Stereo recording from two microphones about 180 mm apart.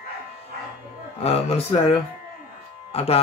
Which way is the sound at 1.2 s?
35° left (ahead or behind).